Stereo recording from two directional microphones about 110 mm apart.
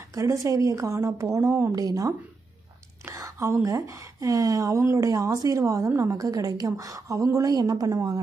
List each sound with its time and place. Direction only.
0.1 s a woman's voice: 30° right (ahead or behind)